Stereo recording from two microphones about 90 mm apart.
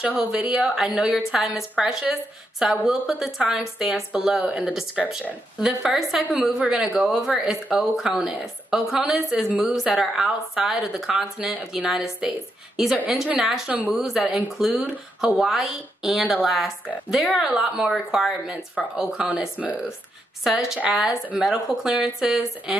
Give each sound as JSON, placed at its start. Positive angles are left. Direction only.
{"t": 0.0, "sound": "a woman's voice", "side_deg": -10}
{"t": 13.7, "sound": "speech", "side_deg": -20}
{"t": 14.0, "sound": "a woman's voice", "side_deg": -5}
{"t": 20.4, "sound": "a woman's voice", "side_deg": -5}